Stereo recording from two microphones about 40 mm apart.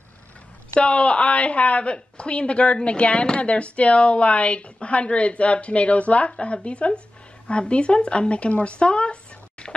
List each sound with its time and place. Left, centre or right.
0.7 s speech: left